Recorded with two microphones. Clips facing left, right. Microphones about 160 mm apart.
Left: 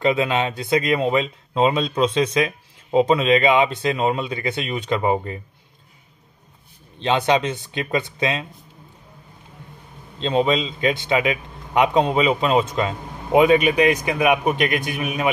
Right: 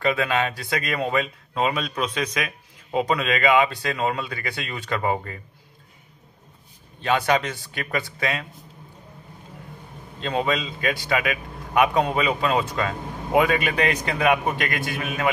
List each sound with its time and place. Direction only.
0.0 s speech: 20° left (ahead or behind)
7.0 s speech: 20° left (ahead or behind)
10.2 s a man's voice: 20° left (ahead or behind)